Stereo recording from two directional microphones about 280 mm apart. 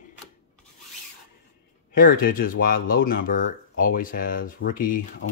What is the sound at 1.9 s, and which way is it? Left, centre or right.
Speech, left.